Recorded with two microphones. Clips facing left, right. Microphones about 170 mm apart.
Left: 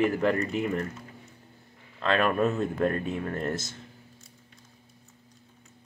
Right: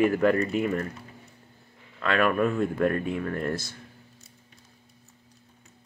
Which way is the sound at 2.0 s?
25° left (ahead or behind).